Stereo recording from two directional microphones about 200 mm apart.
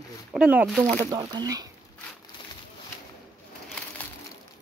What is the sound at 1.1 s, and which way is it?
Speech, 20° right (ahead or behind).